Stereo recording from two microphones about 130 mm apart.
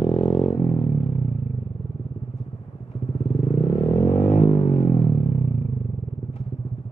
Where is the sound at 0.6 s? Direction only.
60° left (ahead or behind).